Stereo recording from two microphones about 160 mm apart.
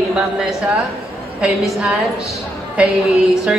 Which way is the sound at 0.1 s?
5° right (ahead or behind).